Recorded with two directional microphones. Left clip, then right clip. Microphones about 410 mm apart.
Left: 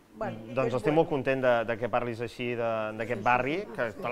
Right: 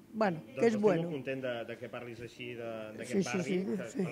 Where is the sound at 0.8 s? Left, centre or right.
Centre.